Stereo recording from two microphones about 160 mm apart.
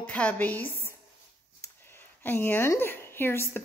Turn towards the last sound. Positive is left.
turn(degrees=15)  # may be behind; listen again after turning